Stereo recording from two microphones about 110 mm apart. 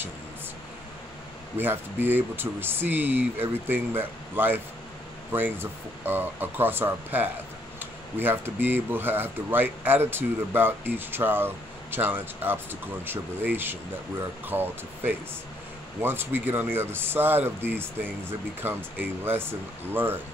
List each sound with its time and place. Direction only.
1.6 s speech: 20° right (ahead or behind)